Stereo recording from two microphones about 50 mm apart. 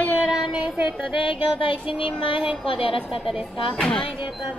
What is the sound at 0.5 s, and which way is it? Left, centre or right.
Child singing, right.